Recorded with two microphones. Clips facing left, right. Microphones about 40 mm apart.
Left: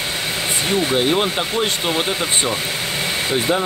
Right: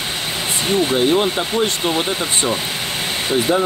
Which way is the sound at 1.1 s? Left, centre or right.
Centre.